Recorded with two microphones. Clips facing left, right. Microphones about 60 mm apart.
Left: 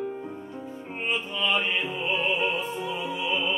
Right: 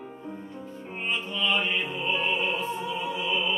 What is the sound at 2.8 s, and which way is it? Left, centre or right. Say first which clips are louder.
Music: even; left.